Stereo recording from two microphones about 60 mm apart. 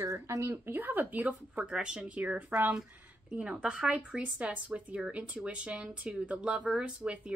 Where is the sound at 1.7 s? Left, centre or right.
Centre.